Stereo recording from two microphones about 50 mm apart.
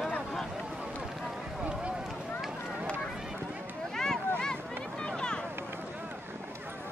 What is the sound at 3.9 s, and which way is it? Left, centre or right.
Boat, centre.